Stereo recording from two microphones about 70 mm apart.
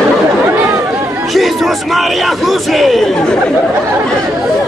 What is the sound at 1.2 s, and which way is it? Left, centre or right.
A man's voice, centre.